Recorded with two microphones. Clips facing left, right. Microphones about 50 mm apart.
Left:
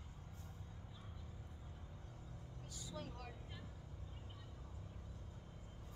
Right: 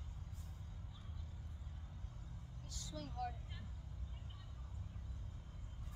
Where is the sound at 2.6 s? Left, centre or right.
Centre.